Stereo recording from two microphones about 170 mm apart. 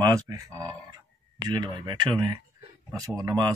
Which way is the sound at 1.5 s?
25° right (ahead or behind).